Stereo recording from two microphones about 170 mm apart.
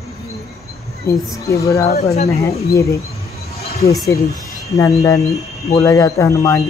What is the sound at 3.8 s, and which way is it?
Speech, 20° left (ahead or behind).